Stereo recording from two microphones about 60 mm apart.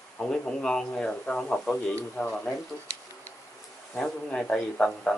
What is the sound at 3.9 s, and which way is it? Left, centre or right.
Speech, centre.